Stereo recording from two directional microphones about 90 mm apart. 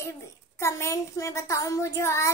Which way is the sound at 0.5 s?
30° left (ahead or behind).